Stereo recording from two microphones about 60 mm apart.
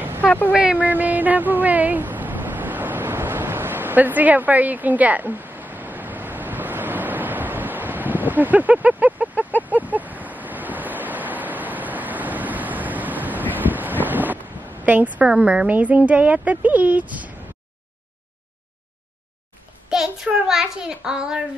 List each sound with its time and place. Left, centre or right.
0.2 s speech: left
0.6 s a sound: right
9.6 s wind: right
15.2 s a child's voice: centre
19.9 s a child's voice: centre